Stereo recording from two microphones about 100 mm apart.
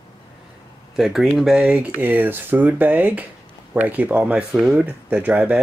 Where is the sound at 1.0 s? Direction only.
5° right (ahead or behind).